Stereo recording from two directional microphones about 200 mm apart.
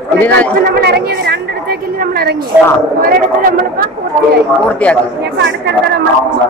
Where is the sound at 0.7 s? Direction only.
55° right (ahead or behind).